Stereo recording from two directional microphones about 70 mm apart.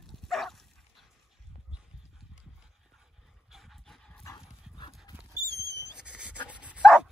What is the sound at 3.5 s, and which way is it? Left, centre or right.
Dog, centre.